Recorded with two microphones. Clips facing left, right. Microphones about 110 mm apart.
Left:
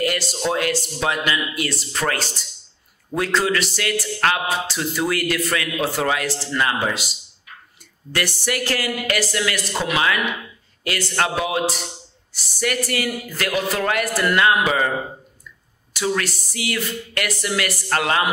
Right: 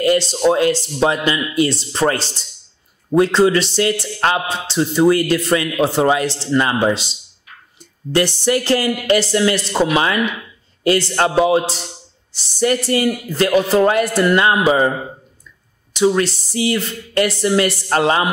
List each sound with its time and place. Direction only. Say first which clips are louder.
0.0 s speech: right 8 dB; 25° right (ahead or behind)
15.9 s speech: right 8 dB; 20° right (ahead or behind)